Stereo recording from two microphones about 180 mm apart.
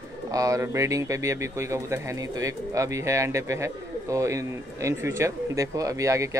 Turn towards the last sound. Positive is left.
turn(degrees=-15)  # may be behind; listen again after turning